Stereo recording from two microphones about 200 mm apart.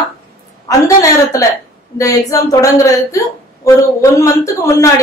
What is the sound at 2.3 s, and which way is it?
A woman's voice, 15° left (ahead or behind).